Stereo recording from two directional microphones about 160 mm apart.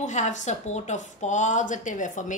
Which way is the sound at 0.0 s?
50° left (ahead or behind).